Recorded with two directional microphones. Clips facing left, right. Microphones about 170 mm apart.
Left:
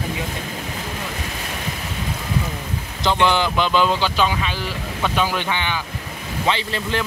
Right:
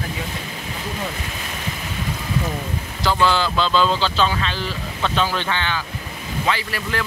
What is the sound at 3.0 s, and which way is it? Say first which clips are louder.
Speech: left 1 dB; 20° left (ahead or behind).